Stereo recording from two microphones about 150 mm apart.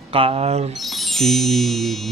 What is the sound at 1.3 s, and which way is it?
Speech, centre (ahead or behind).